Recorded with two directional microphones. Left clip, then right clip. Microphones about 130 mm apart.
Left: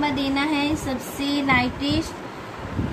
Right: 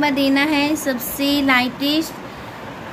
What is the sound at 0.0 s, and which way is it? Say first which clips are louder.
Speech: right 6 dB; 65° right (ahead or behind).